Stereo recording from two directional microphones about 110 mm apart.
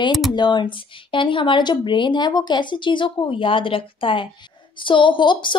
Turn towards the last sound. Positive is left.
turn(degrees=50)  # may be behind; listen again after turning